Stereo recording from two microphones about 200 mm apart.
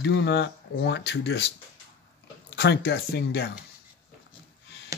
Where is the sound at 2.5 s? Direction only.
55° left (ahead or behind).